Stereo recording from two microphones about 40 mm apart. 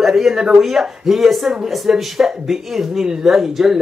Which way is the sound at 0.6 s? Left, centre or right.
Centre.